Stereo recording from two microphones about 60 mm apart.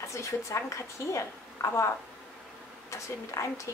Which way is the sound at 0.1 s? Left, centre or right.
Left.